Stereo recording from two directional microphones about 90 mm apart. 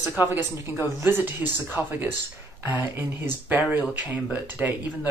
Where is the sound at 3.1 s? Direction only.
20° right (ahead or behind).